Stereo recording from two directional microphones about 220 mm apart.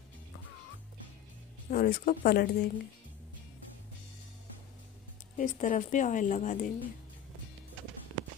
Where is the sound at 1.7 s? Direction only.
40° left (ahead or behind).